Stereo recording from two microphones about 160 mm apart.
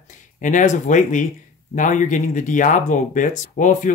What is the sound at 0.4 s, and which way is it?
Speech, 50° left (ahead or behind).